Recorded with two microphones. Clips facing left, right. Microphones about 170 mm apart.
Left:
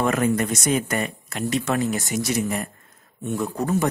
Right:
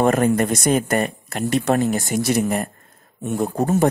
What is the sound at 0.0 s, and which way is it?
A man's voice, 45° right (ahead or behind).